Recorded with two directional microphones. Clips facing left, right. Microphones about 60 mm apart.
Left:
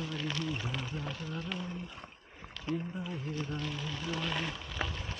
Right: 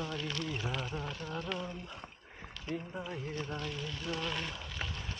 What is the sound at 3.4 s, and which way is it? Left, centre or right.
Speech, centre.